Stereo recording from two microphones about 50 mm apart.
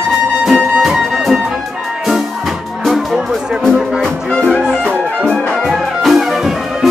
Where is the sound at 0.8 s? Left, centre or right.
Centre.